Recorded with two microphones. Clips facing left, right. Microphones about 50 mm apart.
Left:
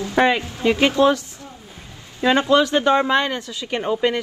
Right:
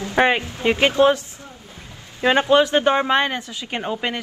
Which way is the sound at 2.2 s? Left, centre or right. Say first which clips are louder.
Even; right.